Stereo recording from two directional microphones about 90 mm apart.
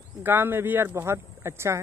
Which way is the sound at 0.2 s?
25° right (ahead or behind).